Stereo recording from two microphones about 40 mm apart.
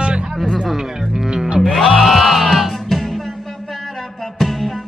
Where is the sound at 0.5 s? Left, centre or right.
Centre.